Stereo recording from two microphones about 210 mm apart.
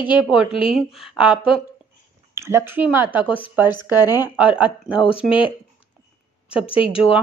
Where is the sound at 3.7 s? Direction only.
20° left (ahead or behind).